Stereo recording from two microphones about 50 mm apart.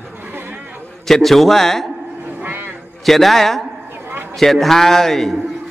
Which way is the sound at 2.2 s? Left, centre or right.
Right.